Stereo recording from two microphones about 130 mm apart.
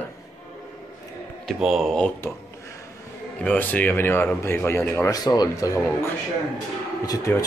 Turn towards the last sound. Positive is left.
turn(degrees=25)  # may be behind; listen again after turning